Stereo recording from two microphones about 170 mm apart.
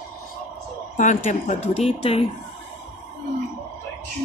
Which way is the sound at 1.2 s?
40° left (ahead or behind).